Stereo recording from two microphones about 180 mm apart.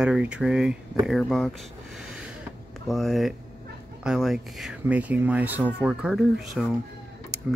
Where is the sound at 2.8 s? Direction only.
Centre (ahead or behind).